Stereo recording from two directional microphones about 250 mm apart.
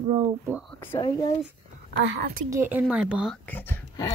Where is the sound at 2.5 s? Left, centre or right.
Centre.